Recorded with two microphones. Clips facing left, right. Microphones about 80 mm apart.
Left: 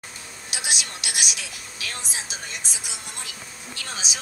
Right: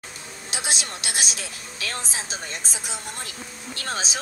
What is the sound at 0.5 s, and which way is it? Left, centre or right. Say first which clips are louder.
A woman's voice: right 1 dB; right.